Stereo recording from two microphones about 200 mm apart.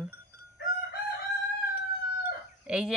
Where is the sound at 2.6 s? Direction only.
5° right (ahead or behind).